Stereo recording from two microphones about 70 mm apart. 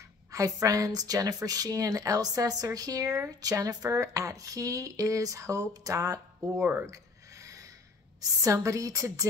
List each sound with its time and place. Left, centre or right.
0.3 s a woman's voice: right
6.6 s speech: right
6.9 s a sound: right
8.2 s speech: right